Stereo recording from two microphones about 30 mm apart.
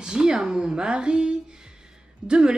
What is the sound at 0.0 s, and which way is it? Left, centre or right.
A woman's voice, right.